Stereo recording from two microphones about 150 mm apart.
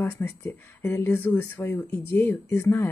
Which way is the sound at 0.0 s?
15° left (ahead or behind).